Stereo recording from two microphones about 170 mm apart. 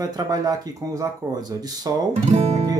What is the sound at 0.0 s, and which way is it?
Speech, 20° right (ahead or behind).